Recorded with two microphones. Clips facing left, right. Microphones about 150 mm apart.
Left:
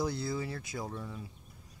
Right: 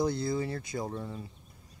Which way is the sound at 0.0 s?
5° left (ahead or behind).